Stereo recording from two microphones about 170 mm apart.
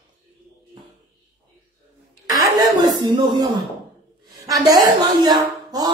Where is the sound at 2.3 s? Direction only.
20° right (ahead or behind).